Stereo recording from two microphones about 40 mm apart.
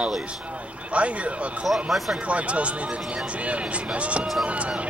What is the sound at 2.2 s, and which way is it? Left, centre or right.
A man's voice, right.